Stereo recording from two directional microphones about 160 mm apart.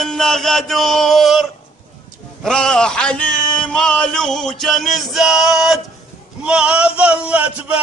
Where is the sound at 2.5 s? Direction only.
5° left (ahead or behind).